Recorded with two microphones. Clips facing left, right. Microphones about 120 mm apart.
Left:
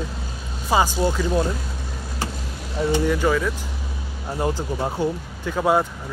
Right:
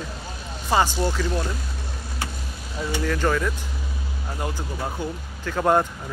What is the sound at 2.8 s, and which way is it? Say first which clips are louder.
Speech: left 6 dB; 20° left (ahead or behind).